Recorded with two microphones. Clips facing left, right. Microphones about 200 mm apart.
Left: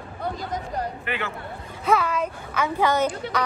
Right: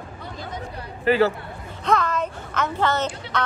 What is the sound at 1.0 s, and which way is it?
Speech, 35° right (ahead or behind).